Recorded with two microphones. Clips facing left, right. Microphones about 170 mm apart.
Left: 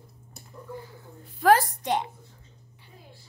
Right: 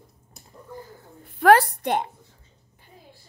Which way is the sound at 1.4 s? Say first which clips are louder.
Right 4 dB; 65° right (ahead or behind).